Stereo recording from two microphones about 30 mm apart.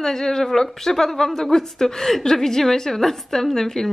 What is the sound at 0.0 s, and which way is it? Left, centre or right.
A woman's voice, centre.